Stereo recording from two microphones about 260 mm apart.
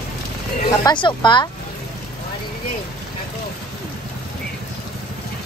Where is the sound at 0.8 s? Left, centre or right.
Centre.